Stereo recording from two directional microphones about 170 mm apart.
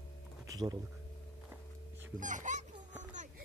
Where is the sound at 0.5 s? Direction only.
25° right (ahead or behind).